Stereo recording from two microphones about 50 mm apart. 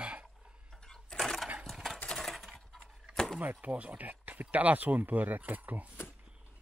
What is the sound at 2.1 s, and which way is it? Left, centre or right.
Coin, centre.